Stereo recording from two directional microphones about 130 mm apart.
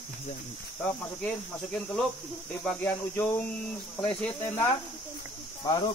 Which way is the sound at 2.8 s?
15° left (ahead or behind).